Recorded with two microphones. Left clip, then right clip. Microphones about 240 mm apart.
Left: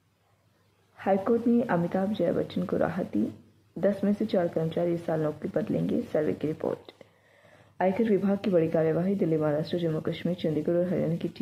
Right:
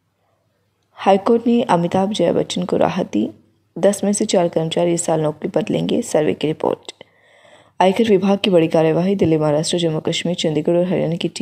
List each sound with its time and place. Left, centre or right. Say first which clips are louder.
0.9 s a woman's voice: right 11 dB; right